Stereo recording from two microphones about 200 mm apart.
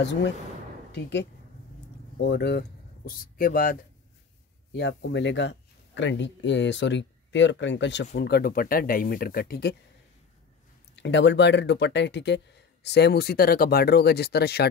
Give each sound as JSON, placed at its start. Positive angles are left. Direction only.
{"t": 0.0, "sound": "speech", "side_deg": 60}
{"t": 2.1, "sound": "speech", "side_deg": 55}
{"t": 3.1, "sound": "speech", "side_deg": 45}
{"t": 4.7, "sound": "speech", "side_deg": 60}
{"t": 11.0, "sound": "speech", "side_deg": 60}